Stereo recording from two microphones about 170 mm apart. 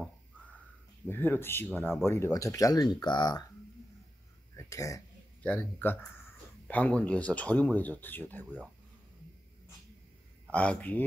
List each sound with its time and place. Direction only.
1.0 s speech: 10° left (ahead or behind)
4.6 s speech: 20° left (ahead or behind)
10.5 s speech: 10° left (ahead or behind)